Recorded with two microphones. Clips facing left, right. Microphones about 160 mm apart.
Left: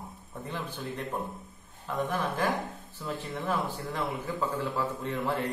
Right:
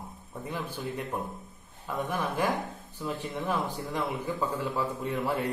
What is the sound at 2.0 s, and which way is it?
Speech, 10° right (ahead or behind).